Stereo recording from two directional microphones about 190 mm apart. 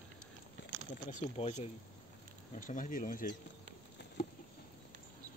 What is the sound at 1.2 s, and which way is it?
Speech, 35° left (ahead or behind).